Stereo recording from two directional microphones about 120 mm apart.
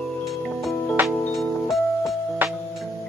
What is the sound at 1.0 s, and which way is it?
Music, 15° right (ahead or behind).